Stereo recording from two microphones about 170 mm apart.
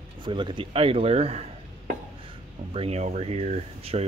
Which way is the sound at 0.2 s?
30° right (ahead or behind).